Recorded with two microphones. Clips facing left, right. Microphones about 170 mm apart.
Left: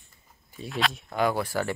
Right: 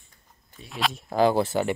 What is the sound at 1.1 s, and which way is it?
Speech, 25° right (ahead or behind).